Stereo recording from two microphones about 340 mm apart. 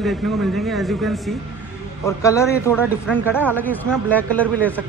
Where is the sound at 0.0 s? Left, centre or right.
Centre.